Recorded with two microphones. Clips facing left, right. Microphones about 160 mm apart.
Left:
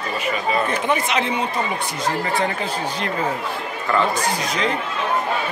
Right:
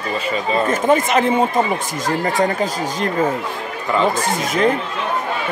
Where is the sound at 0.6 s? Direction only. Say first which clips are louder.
Right 6 dB; 45° right (ahead or behind).